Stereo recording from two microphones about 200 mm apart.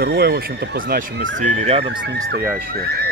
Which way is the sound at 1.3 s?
35° right (ahead or behind).